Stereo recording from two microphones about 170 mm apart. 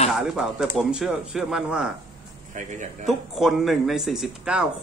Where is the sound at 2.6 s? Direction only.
45° right (ahead or behind).